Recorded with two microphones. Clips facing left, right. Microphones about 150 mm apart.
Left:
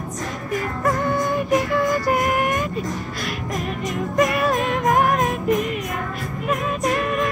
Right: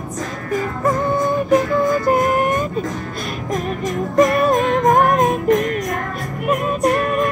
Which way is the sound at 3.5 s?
45° right (ahead or behind).